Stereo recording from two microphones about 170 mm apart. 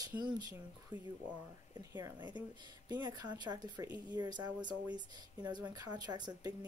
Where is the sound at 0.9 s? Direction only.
10° right (ahead or behind).